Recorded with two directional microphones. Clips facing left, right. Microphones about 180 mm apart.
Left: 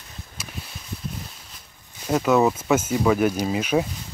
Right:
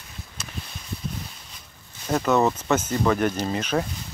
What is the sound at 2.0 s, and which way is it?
Speech, 5° left (ahead or behind).